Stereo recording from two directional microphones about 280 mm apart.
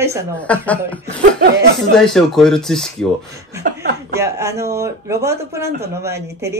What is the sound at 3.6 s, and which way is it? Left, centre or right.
Chuckle, right.